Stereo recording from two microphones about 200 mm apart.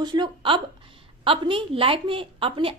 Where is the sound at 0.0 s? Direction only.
20° right (ahead or behind).